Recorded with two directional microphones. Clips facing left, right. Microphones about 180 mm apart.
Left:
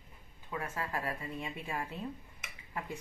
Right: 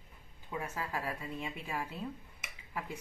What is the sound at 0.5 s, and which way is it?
Speech, 10° right (ahead or behind).